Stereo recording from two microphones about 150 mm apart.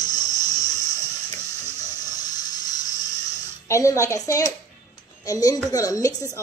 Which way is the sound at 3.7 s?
20° left (ahead or behind).